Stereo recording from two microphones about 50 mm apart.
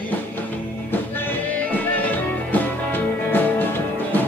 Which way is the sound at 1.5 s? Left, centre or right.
Left.